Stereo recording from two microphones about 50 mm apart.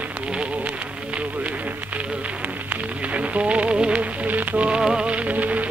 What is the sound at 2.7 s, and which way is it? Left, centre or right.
Rain on surface, right.